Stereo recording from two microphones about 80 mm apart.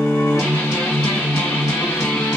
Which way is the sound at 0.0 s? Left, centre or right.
Centre.